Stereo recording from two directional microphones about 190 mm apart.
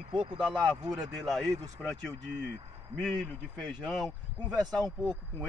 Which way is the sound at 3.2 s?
5° left (ahead or behind).